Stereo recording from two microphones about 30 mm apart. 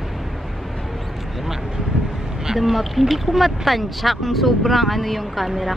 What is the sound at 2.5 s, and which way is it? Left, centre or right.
Speech, centre.